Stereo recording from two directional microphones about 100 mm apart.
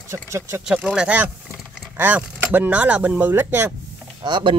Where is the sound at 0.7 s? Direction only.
5° right (ahead or behind).